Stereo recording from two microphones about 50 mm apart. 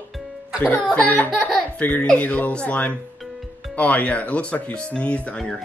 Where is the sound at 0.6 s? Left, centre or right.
Left.